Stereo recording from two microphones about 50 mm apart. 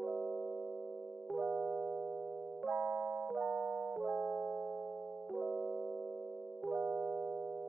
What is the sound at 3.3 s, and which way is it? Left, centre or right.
Music, right.